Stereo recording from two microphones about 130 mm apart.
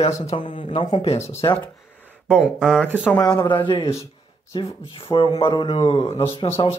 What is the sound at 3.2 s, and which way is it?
Speech, 30° left (ahead or behind).